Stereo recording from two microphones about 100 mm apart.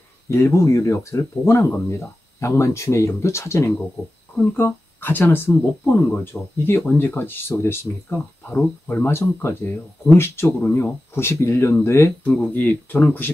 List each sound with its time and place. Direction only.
0.3 s speech: 30° left (ahead or behind)
6.6 s speech: 20° left (ahead or behind)
12.3 s speech: 15° left (ahead or behind)